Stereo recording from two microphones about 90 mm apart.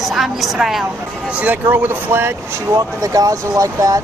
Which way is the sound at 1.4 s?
25° right (ahead or behind).